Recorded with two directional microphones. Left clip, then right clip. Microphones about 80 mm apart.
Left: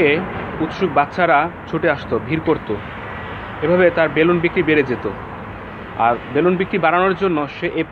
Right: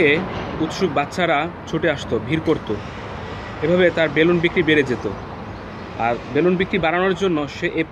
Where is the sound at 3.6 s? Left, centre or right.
Right.